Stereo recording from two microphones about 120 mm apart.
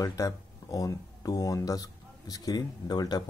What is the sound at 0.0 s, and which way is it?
Speech, 30° left (ahead or behind).